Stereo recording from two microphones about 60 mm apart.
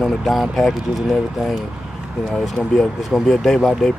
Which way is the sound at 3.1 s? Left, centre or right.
Centre.